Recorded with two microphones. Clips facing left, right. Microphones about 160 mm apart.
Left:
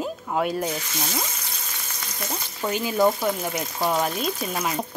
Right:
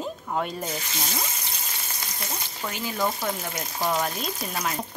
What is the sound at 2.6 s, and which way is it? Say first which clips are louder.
Speech: left 8 dB; 30° left (ahead or behind).